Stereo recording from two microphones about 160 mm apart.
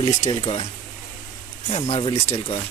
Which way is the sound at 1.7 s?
35° left (ahead or behind).